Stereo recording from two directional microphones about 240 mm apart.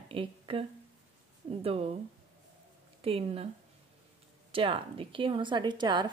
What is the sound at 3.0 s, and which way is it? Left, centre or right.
Speech, right.